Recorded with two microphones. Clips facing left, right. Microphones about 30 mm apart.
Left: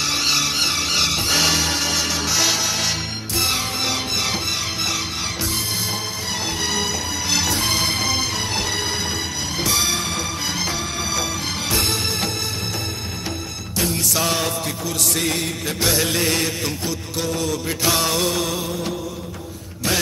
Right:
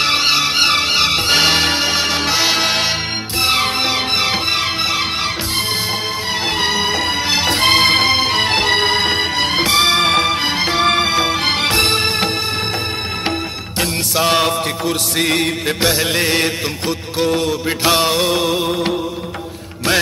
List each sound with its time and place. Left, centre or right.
0.0 s music: right
6.6 s music: right
7.5 s music: right
14.1 s music: right
18.7 s music: right